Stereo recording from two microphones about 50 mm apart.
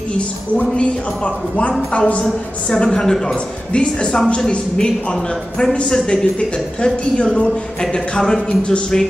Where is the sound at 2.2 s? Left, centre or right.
Centre.